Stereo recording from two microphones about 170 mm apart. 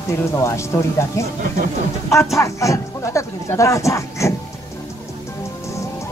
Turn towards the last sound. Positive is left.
turn(degrees=15)  # may be behind; listen again after turning